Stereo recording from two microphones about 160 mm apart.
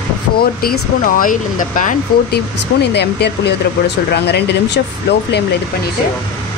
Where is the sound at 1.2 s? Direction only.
55° left (ahead or behind).